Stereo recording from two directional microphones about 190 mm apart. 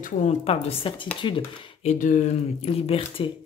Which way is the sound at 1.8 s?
45° left (ahead or behind).